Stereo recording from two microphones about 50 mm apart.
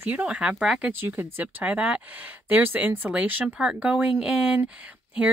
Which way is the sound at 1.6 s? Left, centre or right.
Right.